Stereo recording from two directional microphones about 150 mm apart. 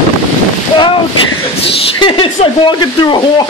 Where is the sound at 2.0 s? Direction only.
35° left (ahead or behind).